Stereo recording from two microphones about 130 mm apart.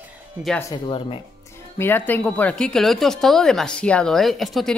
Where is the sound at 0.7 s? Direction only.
40° left (ahead or behind).